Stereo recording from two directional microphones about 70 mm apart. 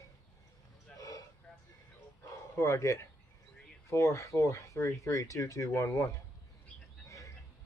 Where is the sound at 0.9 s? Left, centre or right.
Left.